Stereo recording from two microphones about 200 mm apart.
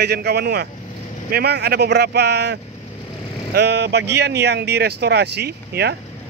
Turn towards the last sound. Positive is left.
turn(degrees=-55)  # may be behind; listen again after turning